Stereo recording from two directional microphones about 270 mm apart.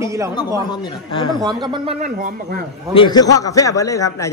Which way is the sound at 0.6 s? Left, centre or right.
Centre.